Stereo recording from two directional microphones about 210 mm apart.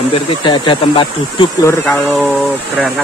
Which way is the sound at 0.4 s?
25° left (ahead or behind).